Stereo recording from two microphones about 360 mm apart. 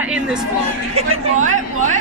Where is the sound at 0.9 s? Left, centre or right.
Centre.